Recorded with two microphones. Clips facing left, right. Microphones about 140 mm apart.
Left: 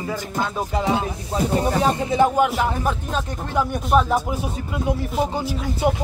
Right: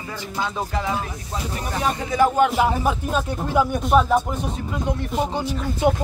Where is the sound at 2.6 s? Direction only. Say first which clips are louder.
Right 2 dB; 10° right (ahead or behind).